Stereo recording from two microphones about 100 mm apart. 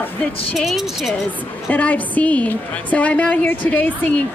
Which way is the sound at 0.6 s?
Centre (ahead or behind).